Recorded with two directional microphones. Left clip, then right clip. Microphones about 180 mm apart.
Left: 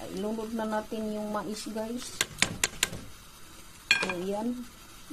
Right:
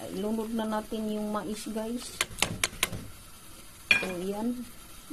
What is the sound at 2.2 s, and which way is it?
Typewriter, centre (ahead or behind).